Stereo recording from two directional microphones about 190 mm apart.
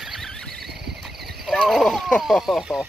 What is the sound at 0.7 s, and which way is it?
Cricket, 60° right (ahead or behind).